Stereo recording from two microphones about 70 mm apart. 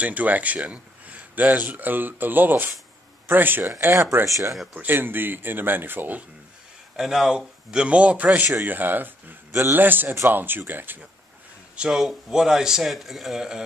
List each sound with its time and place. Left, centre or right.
0.0 s a man's voice: right
4.3 s speech: right
4.7 s a man's voice: right
7.0 s a man's voice: centre; by 11.0 s right
11.9 s speech: centre